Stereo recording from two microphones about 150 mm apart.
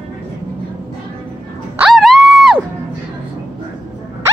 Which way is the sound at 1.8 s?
Centre (ahead or behind).